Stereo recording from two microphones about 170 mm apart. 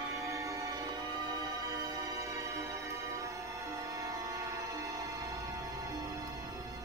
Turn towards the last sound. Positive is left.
turn(degrees=-20)  # may be behind; listen again after turning